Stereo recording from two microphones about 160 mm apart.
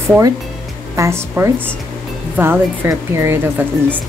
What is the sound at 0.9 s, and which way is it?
A woman's voice, 15° right (ahead or behind).